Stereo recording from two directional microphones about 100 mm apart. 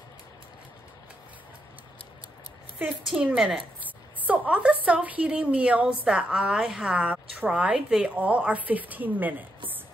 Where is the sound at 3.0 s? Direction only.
10° right (ahead or behind).